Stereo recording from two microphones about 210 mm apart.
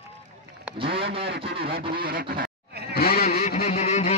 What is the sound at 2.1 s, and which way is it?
Goose, 50° right (ahead or behind).